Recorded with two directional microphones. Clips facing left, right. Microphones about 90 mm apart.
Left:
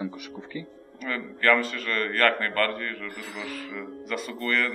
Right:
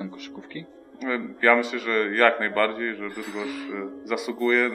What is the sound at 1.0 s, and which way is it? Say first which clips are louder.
A man's voice: right 4 dB; 10° right (ahead or behind).